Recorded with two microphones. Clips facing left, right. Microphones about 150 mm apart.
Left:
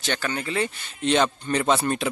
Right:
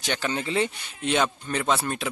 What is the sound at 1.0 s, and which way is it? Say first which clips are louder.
Speech: left 3 dB; 5° right (ahead or behind).